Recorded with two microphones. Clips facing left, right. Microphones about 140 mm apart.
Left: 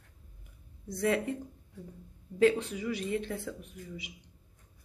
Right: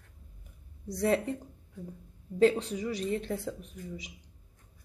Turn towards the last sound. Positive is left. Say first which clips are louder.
# right 2 dB
turn(degrees=-40)  # may be behind; listen again after turning